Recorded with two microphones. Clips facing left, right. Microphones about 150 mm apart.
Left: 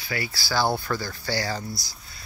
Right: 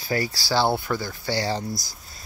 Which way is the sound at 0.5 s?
20° right (ahead or behind).